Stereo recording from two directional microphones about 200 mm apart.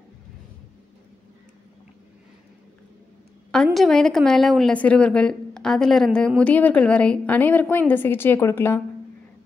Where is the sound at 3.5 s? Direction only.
Centre (ahead or behind).